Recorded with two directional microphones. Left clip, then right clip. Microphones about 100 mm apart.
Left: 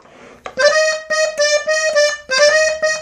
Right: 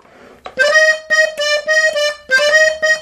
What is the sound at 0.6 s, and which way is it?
Accordion, 10° right (ahead or behind).